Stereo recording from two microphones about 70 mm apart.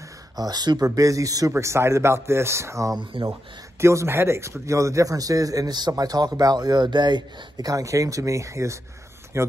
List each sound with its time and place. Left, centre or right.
0.4 s speech: right
0.8 s a man's voice: right
1.5 s a man's voice: right